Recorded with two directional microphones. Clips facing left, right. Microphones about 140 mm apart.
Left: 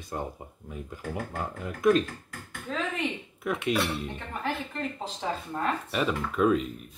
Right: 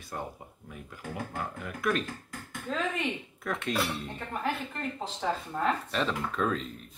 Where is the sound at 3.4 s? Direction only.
10° left (ahead or behind).